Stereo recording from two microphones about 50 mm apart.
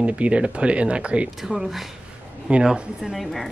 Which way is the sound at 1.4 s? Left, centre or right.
Centre.